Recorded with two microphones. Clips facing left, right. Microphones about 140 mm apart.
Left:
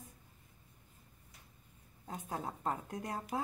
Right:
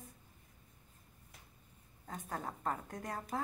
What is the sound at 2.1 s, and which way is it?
Speech, 15° left (ahead or behind).